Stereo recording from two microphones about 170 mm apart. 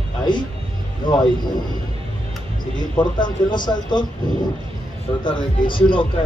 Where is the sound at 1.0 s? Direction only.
50° left (ahead or behind).